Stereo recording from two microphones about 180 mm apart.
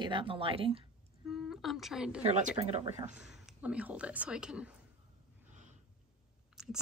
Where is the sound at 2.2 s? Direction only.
35° right (ahead or behind).